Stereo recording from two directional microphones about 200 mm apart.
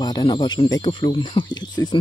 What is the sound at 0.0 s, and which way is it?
Speech, 20° left (ahead or behind).